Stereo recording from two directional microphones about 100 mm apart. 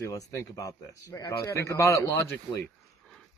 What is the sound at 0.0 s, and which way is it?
Speech, 35° left (ahead or behind).